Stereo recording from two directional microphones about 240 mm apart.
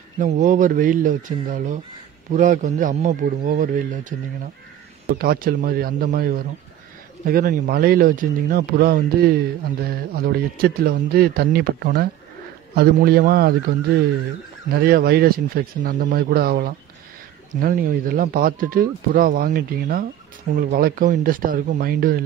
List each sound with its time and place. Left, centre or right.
0.2 s speech: right
5.2 s speech: right
14.7 s speech: right